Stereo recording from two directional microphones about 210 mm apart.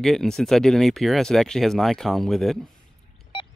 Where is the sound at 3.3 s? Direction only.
25° left (ahead or behind).